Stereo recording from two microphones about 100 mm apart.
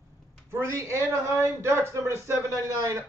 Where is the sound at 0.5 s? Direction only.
30° right (ahead or behind).